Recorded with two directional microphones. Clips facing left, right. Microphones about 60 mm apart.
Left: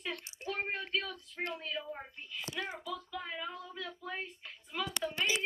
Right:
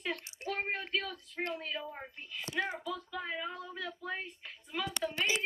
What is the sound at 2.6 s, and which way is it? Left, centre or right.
Speech, right.